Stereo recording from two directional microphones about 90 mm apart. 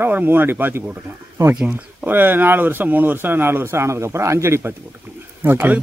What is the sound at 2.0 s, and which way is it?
A man's voice, 20° right (ahead or behind).